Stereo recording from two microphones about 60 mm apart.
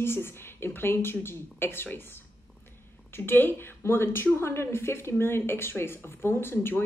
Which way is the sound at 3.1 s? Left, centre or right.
Left.